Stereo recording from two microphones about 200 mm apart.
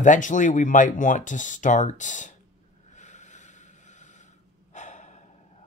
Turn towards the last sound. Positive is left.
turn(degrees=35)  # may be behind; listen again after turning